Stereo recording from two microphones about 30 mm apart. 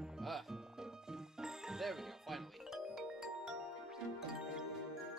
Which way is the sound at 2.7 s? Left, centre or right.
Centre.